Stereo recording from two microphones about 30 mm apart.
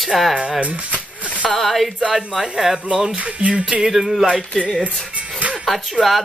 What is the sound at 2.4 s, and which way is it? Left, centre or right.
Speech, centre.